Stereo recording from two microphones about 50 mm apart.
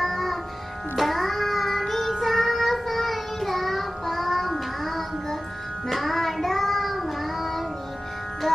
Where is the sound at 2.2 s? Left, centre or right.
Centre.